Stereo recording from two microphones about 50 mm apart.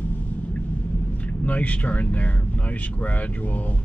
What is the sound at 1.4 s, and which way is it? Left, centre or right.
Speech, left.